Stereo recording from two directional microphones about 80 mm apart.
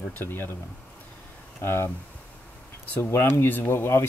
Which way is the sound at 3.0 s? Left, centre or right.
Left.